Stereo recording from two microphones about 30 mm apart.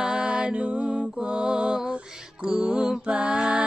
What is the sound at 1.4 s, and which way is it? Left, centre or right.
Music, right.